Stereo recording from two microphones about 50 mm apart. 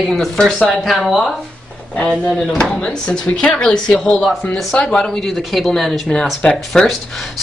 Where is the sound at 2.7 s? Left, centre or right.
Centre.